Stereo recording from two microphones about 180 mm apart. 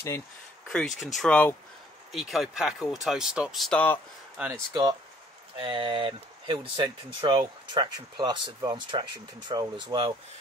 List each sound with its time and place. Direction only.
0.7 s speech: centre (ahead or behind)
4.4 s speech: 5° right (ahead or behind)
5.6 s speech: 25° right (ahead or behind)